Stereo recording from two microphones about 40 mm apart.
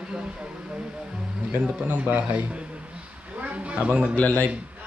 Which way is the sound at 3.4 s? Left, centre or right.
Right.